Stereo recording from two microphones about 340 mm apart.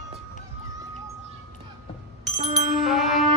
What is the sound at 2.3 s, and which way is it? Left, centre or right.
Music, centre.